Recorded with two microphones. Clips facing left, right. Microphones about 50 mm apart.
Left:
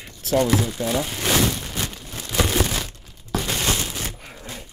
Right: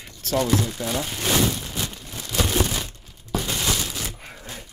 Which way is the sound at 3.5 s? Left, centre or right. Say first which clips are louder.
Left 2 dB; left.